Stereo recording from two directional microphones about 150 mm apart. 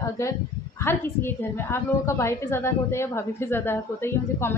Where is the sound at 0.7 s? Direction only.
15° left (ahead or behind).